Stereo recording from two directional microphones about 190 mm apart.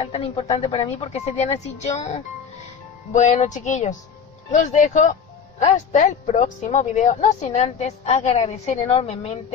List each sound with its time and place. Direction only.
0.0 s speech: 30° left (ahead or behind)